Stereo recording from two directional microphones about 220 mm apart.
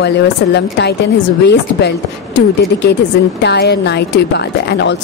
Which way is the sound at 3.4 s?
50° left (ahead or behind).